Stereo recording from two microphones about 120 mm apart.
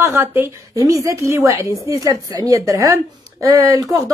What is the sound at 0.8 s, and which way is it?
A woman's voice, 30° right (ahead or behind).